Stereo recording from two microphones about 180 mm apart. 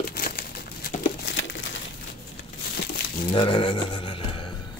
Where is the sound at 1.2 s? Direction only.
80° left.